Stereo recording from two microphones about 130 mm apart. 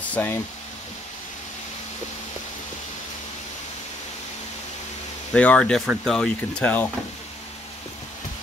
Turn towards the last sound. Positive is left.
turn(degrees=10)  # may be behind; listen again after turning